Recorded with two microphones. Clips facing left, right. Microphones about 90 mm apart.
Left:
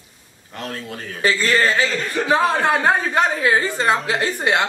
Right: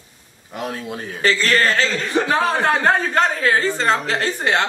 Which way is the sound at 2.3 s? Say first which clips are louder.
Left 3 dB; 10° left (ahead or behind).